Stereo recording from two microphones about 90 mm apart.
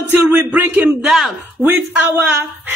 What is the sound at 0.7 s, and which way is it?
Speech, 5° right (ahead or behind).